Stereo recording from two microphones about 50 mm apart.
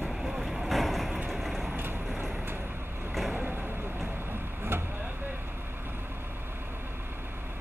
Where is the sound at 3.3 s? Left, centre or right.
Right.